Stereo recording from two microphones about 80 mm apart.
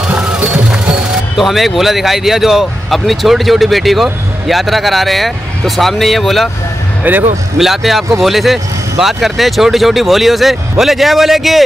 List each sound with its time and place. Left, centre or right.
0.1 s music: centre
1.8 s speech: centre
7.0 s speech: right
7.5 s speech: centre